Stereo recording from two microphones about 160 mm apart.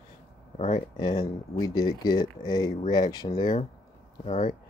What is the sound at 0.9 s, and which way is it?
Speech, 25° left (ahead or behind).